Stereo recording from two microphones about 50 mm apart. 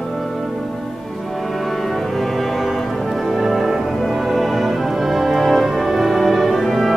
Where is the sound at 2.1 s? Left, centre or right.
Centre.